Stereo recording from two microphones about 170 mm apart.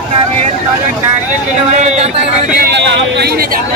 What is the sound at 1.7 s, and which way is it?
Speech, 40° right (ahead or behind).